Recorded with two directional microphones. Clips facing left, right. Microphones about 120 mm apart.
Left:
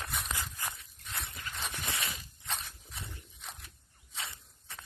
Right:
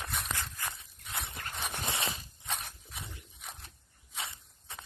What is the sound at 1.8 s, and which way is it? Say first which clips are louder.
Zipper: right 3 dB; 25° right (ahead or behind).